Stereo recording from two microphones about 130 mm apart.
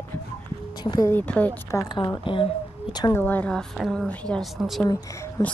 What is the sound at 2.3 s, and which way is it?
Speech, 40° left (ahead or behind).